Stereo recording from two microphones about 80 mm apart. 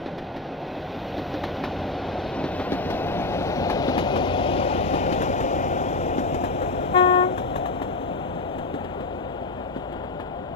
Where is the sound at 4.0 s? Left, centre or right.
Left.